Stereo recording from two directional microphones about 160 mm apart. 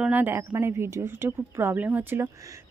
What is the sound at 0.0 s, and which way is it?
A woman's voice, 10° right (ahead or behind).